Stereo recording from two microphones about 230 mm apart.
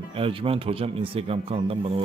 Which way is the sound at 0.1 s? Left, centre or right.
Right.